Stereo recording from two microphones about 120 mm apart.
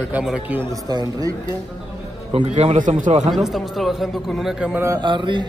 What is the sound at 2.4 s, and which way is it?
Speech, 75° right (ahead or behind).